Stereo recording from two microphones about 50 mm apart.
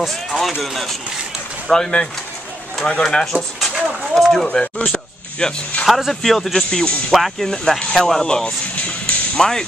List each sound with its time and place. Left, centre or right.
0.0 s speech: centre
1.7 s speech: centre
3.3 s speech: centre
3.7 s speech: centre
4.1 s speech: centre
4.8 s a sound: centre
5.9 s speech: centre
7.1 s speech: centre
9.0 s music: centre